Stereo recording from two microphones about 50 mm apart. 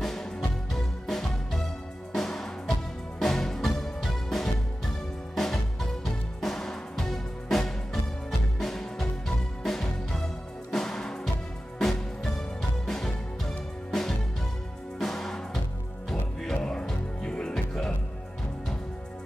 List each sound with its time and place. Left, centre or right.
0.0 s music: centre